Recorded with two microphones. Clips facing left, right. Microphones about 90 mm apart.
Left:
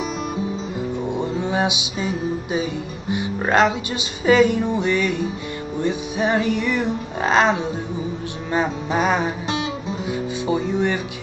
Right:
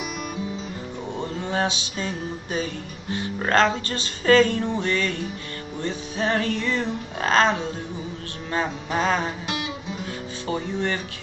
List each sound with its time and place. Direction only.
1.0 s music: 15° left (ahead or behind)